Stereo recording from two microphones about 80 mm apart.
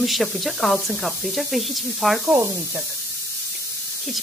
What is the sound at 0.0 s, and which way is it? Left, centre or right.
A woman's voice, centre.